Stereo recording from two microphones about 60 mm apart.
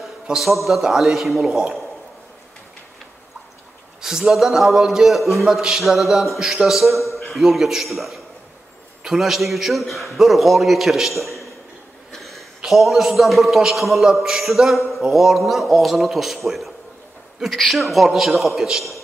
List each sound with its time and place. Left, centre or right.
0.0 s a man's voice: centre
4.0 s a man's voice: centre